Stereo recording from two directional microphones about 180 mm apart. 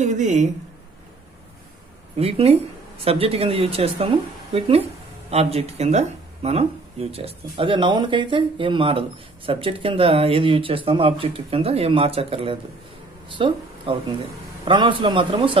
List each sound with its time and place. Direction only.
0.0 s speech: 40° right (ahead or behind)
2.1 s a man's voice: 35° right (ahead or behind)